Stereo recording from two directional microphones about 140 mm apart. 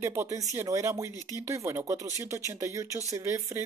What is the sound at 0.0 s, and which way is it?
Speech, 20° right (ahead or behind).